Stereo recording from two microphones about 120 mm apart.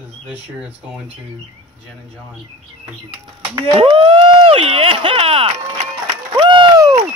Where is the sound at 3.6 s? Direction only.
45° right (ahead or behind).